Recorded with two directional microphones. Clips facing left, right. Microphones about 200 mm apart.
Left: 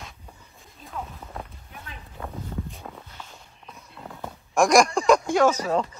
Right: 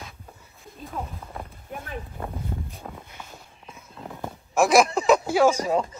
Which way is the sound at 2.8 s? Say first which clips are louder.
Right 1 dB; 10° right (ahead or behind).